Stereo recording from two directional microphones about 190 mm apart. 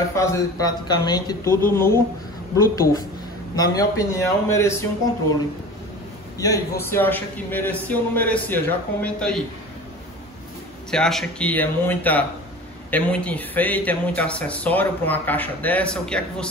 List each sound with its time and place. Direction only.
0.1 s speech: 15° left (ahead or behind)
6.3 s speech: 15° left (ahead or behind)
10.9 s speech: 5° left (ahead or behind)